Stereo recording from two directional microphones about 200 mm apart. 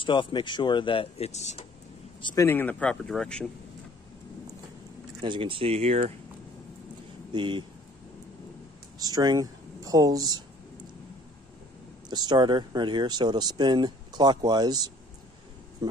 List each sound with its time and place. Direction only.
0.0 s speech: 25° left (ahead or behind)
2.2 s speech: 15° left (ahead or behind)
5.2 s speech: 25° right (ahead or behind)
7.3 s speech: 25° right (ahead or behind)
9.0 s speech: 20° right (ahead or behind)
12.1 s speech: 20° right (ahead or behind)